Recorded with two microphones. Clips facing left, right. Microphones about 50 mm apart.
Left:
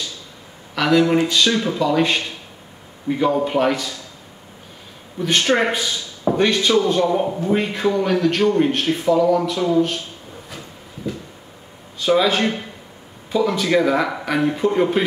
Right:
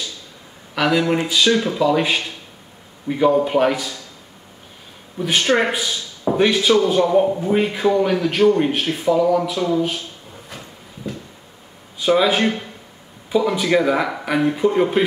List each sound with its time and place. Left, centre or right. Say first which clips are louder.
0.7 s a man's voice: left 2 dB; centre
5.2 s a man's voice: even; centre
12.0 s a man's voice: right 1 dB; centre